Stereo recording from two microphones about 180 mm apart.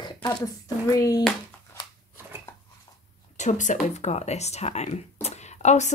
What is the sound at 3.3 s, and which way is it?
Speech, 40° left (ahead or behind).